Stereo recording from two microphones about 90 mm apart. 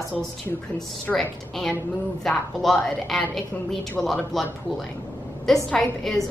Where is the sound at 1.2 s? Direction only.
5° left (ahead or behind).